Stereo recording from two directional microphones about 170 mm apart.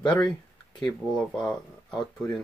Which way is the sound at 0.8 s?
5° left (ahead or behind).